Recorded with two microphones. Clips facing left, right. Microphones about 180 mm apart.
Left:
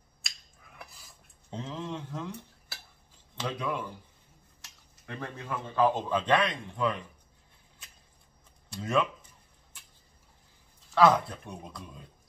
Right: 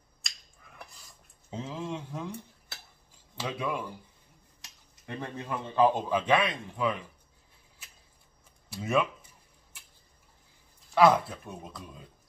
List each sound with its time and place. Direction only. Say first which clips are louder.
0.2 s finger snapping: even; centre (ahead or behind)
1.6 s speech: right 1 dB; 10° right (ahead or behind)
8.6 s speech: right 1 dB; 10° right (ahead or behind)
11.0 s speech: right 1 dB; 5° right (ahead or behind)